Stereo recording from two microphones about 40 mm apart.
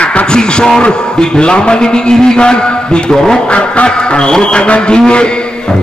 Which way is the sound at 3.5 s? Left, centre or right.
Left.